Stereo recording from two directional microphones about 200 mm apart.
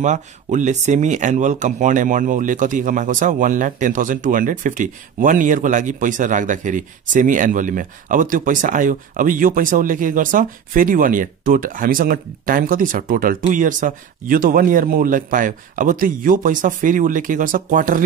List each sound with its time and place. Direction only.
0.0 s speech: 40° right (ahead or behind)